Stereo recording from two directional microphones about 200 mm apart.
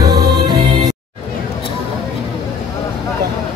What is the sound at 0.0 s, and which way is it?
Music, 20° right (ahead or behind).